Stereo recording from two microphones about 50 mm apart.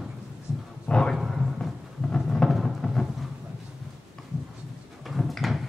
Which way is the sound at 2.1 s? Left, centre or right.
Centre.